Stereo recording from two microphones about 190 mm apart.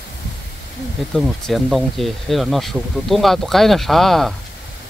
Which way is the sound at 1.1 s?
Centre (ahead or behind).